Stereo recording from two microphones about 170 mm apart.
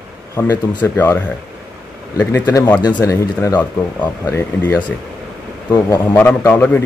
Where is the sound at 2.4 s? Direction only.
20° left (ahead or behind).